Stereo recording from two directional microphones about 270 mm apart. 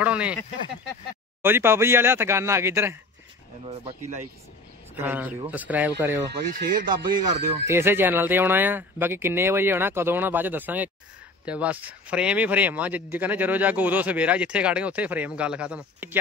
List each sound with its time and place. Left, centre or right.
0.0 s speech: centre
1.4 s speech: centre
3.6 s speech: right
4.9 s speech: centre
6.5 s speech: right
7.2 s speech: centre